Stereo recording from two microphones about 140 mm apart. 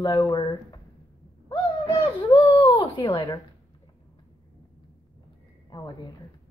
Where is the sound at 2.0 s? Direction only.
35° left (ahead or behind).